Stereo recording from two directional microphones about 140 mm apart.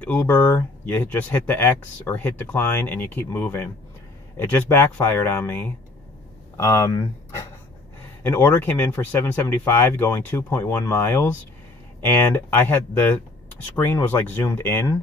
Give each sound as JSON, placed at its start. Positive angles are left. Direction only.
{"t": 0.0, "sound": "speech", "side_deg": 10}
{"t": 6.5, "sound": "speech", "side_deg": 25}